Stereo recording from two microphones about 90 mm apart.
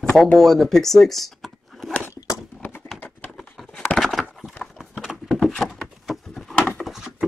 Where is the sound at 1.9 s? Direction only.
20° left (ahead or behind).